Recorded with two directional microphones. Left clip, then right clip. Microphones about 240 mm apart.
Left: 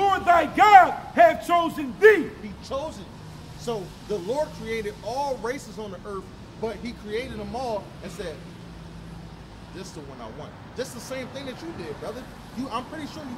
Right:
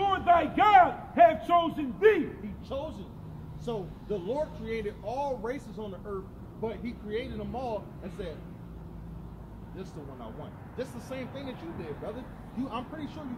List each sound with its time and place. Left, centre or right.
0.0 s a sound: left
2.7 s speech: centre
10.8 s speech: centre
12.6 s speech: centre